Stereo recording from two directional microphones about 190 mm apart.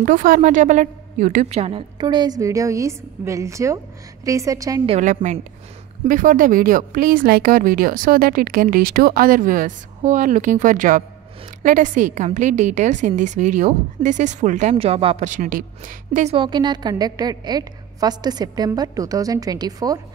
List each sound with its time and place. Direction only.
0.0 s a woman's voice: 45° right (ahead or behind); by 4.8 s 15° right (ahead or behind)
4.8 s a woman's voice: 40° right (ahead or behind)
16.3 s a woman's voice: 25° right (ahead or behind)